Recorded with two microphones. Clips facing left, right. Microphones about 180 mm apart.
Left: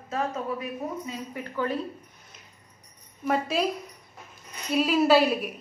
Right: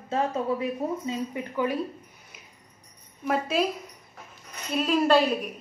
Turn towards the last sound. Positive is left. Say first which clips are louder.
# left 1 dB
turn(degrees=5)  # may be behind; listen again after turning